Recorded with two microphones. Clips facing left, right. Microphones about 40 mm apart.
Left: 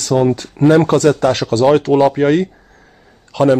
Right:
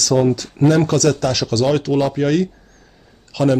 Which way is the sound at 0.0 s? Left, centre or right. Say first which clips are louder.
Left 2 dB; left.